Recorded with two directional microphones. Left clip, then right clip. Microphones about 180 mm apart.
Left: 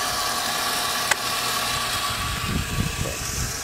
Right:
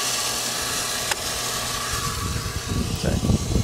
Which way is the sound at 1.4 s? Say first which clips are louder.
Left 3 dB; 35° left (ahead or behind).